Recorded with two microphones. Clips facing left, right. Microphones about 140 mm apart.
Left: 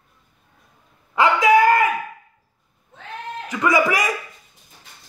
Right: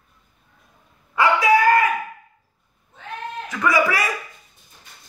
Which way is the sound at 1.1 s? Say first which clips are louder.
Left 2 dB; 20° left (ahead or behind).